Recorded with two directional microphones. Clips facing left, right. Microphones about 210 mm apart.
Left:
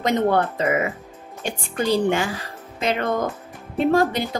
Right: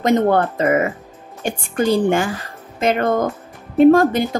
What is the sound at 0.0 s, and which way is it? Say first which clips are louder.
Speech: right 4 dB; 50° right (ahead or behind).